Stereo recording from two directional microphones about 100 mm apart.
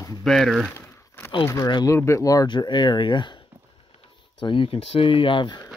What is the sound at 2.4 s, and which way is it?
Speech, 50° left (ahead or behind).